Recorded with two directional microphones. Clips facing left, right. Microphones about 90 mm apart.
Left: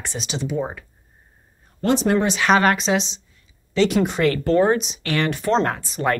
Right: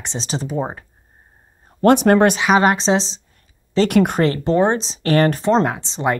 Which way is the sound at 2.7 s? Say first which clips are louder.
Right 3 dB; 30° right (ahead or behind).